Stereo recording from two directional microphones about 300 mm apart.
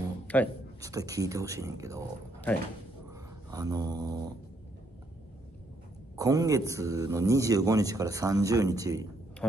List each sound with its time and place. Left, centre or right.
0.3 s speech: centre
0.7 s a man's voice: centre
3.1 s dog: centre
6.1 s a man's voice: centre
9.4 s speech: centre